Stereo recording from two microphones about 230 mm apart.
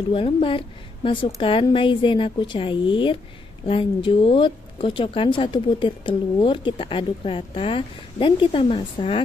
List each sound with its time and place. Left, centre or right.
0.1 s speech: left